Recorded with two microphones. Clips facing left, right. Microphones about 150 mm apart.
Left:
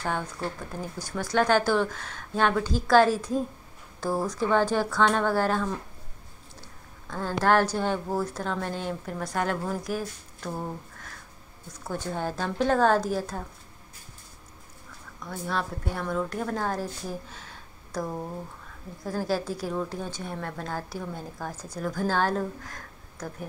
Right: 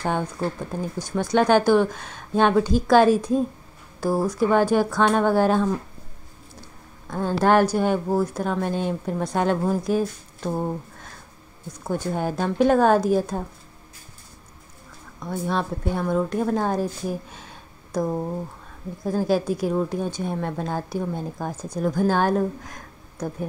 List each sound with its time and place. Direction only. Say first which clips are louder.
0.0 s a woman's voice: right 5 dB; 20° right (ahead or behind)
7.1 s speech: right 4 dB; 15° right (ahead or behind)
11.8 s a woman's voice: right 5 dB; 15° right (ahead or behind)
15.1 s a woman's voice: right 6 dB; 20° right (ahead or behind)